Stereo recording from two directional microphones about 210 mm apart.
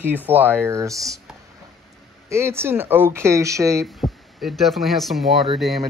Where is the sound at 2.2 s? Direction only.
10° right (ahead or behind).